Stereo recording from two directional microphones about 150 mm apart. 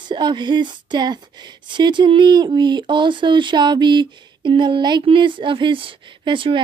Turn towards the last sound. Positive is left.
turn(degrees=-35)  # may be behind; listen again after turning